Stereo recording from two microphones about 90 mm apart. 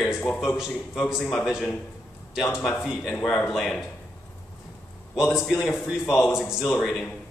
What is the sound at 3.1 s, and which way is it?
Speech, 15° left (ahead or behind).